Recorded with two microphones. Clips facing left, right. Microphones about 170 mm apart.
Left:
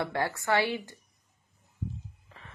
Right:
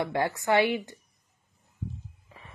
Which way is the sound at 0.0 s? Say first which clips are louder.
Right 3 dB; 15° right (ahead or behind).